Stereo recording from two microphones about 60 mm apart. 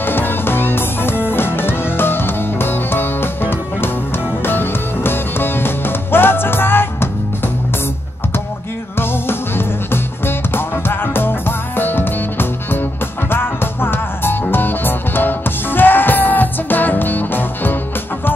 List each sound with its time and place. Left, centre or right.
0.0 s music: left
8.9 s music: left